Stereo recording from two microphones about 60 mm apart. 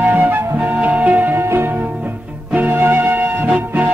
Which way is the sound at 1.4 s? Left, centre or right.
Right.